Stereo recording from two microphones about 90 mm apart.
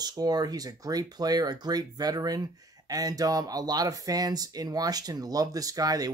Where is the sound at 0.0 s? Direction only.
50° right (ahead or behind).